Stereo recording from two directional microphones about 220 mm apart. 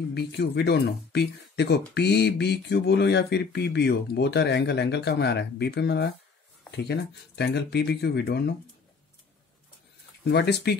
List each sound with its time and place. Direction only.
0.1 s speech: 50° left (ahead or behind)
10.2 s speech: 50° left (ahead or behind)